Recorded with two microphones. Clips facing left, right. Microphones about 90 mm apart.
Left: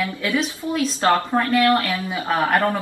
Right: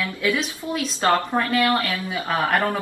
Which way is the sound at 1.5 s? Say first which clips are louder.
Left 4 dB; 15° right (ahead or behind).